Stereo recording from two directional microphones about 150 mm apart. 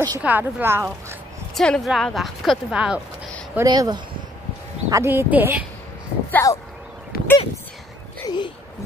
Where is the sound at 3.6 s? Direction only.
25° right (ahead or behind); by 5.7 s 10° right (ahead or behind).